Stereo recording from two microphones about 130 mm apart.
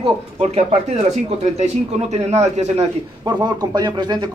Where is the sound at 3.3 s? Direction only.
30° right (ahead or behind).